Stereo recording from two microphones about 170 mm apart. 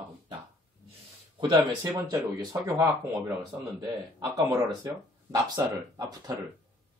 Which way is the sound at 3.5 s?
5° right (ahead or behind).